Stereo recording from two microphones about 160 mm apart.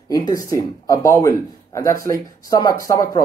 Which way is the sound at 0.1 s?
25° left (ahead or behind).